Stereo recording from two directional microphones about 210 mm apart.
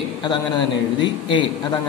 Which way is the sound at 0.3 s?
20° left (ahead or behind).